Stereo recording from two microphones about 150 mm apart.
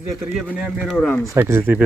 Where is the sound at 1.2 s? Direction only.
15° right (ahead or behind).